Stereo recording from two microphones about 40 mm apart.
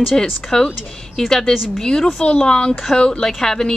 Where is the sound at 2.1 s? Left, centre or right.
Left.